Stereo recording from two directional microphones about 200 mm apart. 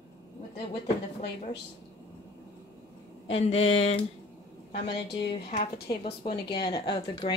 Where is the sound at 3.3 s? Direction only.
30° left (ahead or behind).